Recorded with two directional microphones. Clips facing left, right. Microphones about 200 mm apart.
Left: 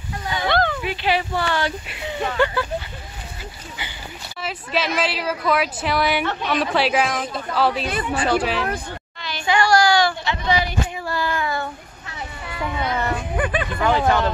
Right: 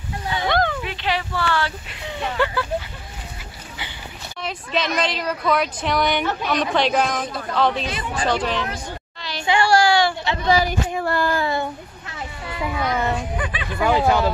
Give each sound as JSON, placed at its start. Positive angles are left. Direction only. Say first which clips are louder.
{"t": 0.5, "sound": "a sound", "louder": "even", "side_deg": -15}
{"t": 0.8, "sound": "speech", "louder": "left 3 dB", "side_deg": 10}
{"t": 2.3, "sound": "a woman's voice", "louder": "left 1 dB", "side_deg": 0}
{"t": 3.8, "sound": "a woman's voice", "louder": "even", "side_deg": 0}
{"t": 9.2, "sound": "a sound", "louder": "even", "side_deg": -30}
{"t": 10.3, "sound": "speech", "louder": "right 3 dB", "side_deg": -40}
{"t": 11.3, "sound": "a sound", "louder": "right 3 dB", "side_deg": -30}
{"t": 12.6, "sound": "speech", "louder": "right 1 dB", "side_deg": -5}
{"t": 13.4, "sound": "speech", "louder": "left 6 dB", "side_deg": 50}
{"t": 13.7, "sound": "speech", "louder": "right 2 dB", "side_deg": -10}